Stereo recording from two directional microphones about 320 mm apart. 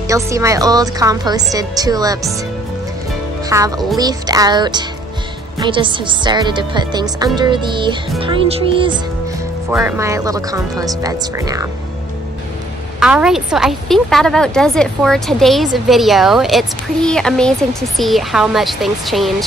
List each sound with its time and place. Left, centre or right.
0.1 s speech: centre
3.4 s speech: centre
13.0 s a woman's voice: centre